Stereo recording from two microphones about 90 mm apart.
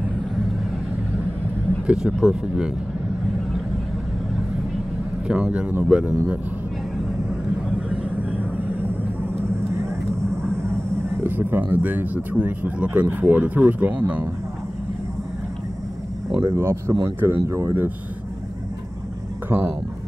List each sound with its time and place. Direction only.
1.9 s speech: 10° right (ahead or behind)
5.3 s speech: 10° right (ahead or behind)
7.9 s vehicle: 15° right (ahead or behind)
11.2 s speech: 20° right (ahead or behind)
16.3 s speech: 30° right (ahead or behind)
19.5 s speech: 25° right (ahead or behind)